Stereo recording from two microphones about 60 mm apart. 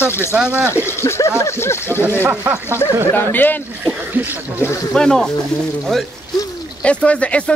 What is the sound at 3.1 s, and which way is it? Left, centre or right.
Speech, left.